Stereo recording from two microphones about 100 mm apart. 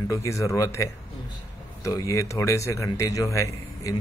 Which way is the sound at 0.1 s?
35° left (ahead or behind).